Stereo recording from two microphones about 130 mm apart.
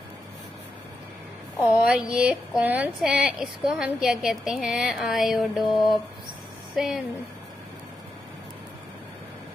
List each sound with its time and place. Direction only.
1.6 s a woman's voice: 5° right (ahead or behind)
5.7 s a sound: 35° left (ahead or behind)
6.7 s speech: centre (ahead or behind)